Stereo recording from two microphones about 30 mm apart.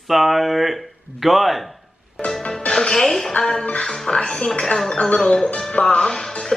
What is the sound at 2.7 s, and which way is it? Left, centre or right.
Music, left.